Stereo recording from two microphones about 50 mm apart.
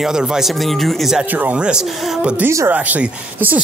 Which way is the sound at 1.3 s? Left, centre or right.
Right.